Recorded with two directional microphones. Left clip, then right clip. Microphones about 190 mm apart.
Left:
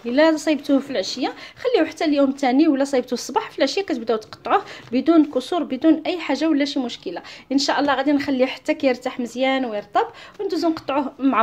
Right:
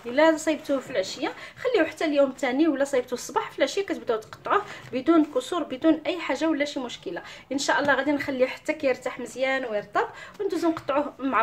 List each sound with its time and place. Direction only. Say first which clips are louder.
0.1 s a woman's voice: left 4 dB; 35° left (ahead or behind)